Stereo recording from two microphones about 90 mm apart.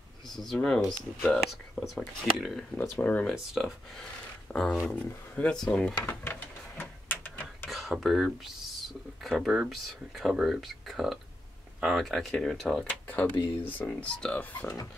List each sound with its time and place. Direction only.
0.6 s speech: 5° left (ahead or behind)
2.8 s speech: 20° left (ahead or behind)
3.3 s speech: centre (ahead or behind)
4.5 s speech: 10° left (ahead or behind)
5.6 s speech: 5° left (ahead or behind)
6.8 s a sound: 20° left (ahead or behind)
7.7 s speech: centre (ahead or behind)
13.0 s a sound: 20° left (ahead or behind)
13.6 s speech: 20° left (ahead or behind)